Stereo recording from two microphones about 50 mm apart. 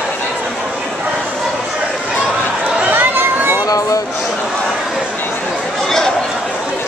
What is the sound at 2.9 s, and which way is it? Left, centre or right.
Chatter, right.